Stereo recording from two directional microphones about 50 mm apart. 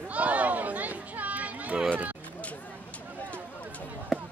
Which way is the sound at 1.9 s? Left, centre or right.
Right.